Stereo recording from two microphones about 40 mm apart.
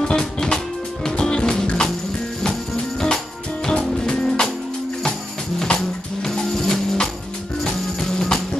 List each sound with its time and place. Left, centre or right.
0.0 s music: centre
5.6 s music: centre